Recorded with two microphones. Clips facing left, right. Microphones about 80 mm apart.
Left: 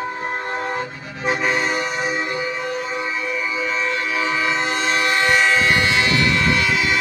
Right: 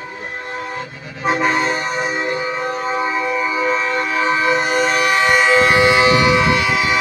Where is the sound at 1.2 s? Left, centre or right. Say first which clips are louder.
Right 4 dB; right.